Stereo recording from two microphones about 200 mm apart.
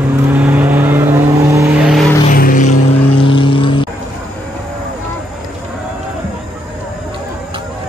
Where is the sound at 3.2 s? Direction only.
25° left (ahead or behind).